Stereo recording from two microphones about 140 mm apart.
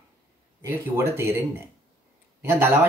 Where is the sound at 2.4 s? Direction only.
15° right (ahead or behind).